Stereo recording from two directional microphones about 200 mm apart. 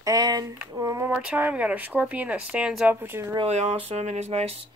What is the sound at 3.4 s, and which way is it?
Speech, 35° right (ahead or behind).